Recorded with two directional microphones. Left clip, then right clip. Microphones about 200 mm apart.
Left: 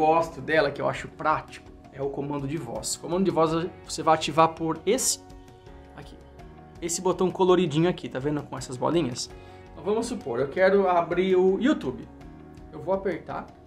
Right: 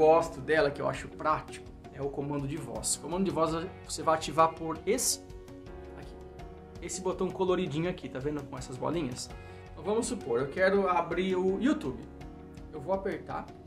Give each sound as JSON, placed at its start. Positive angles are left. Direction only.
{"t": 0.0, "sound": "speech", "side_deg": 20}
{"t": 6.8, "sound": "speech", "side_deg": 40}
{"t": 9.8, "sound": "speech", "side_deg": 15}